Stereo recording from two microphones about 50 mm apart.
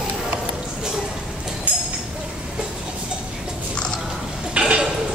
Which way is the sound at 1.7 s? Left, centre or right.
Right.